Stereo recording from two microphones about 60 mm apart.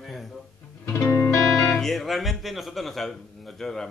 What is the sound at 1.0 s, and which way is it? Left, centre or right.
Music, left.